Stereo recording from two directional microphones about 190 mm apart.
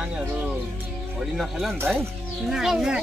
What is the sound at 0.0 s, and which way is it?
Music, 5° right (ahead or behind).